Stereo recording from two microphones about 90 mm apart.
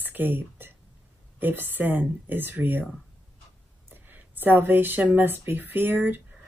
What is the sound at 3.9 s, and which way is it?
Speech, 20° right (ahead or behind).